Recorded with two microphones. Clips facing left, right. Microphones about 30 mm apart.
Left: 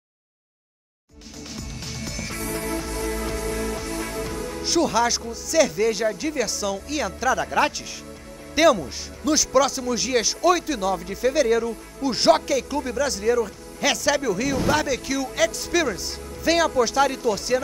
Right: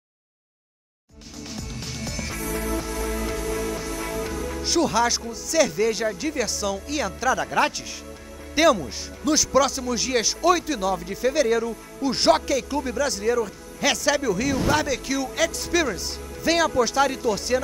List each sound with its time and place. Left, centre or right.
1.5 s music: centre
2.3 s music: left
4.6 s speech: centre